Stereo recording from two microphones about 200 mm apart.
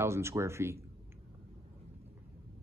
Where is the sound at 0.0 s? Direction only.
15° right (ahead or behind).